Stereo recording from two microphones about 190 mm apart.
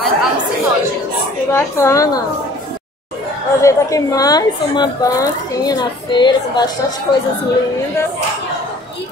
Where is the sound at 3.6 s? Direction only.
15° left (ahead or behind).